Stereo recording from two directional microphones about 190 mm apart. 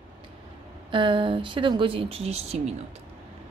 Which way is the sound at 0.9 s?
25° right (ahead or behind).